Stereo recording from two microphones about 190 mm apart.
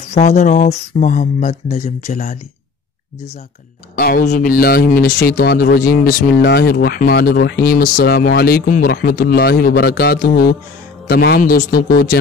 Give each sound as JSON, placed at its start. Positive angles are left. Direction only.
{"t": 0.1, "sound": "speech", "side_deg": 35}
{"t": 3.9, "sound": "speech", "side_deg": 50}